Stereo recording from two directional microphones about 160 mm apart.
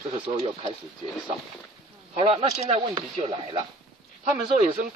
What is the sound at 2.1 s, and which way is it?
Speech, 40° right (ahead or behind).